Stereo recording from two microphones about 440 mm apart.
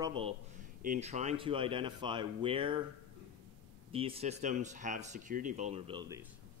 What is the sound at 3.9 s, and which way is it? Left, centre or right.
Speech, centre.